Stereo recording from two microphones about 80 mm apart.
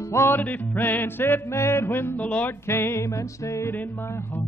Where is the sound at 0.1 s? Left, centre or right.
Left.